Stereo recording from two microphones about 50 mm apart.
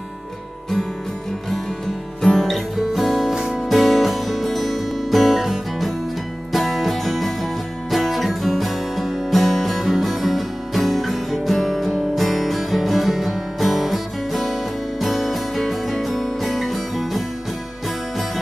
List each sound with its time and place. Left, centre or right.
2.2 s music: centre